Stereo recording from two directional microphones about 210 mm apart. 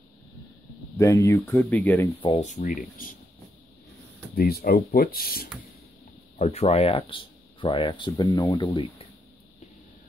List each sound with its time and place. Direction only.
0.9 s speech: 15° left (ahead or behind)
2.2 s speech: 35° left (ahead or behind)
4.4 s speech: 45° left (ahead or behind)
6.3 s speech: 30° left (ahead or behind)